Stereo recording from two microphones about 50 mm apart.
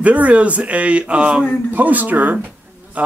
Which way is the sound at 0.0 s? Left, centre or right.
Right.